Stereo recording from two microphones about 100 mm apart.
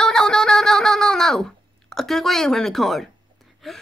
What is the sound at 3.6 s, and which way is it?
Speech, centre (ahead or behind).